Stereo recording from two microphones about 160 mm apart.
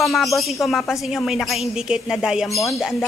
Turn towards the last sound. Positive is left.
turn(degrees=0)  # may be behind; listen again after turning